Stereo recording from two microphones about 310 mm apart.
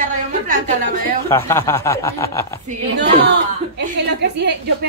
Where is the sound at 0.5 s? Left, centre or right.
Right.